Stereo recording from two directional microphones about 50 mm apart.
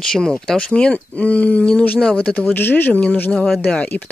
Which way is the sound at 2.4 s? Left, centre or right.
Left.